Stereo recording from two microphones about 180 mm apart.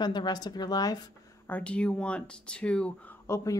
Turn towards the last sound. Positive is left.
turn(degrees=15)  # may be behind; listen again after turning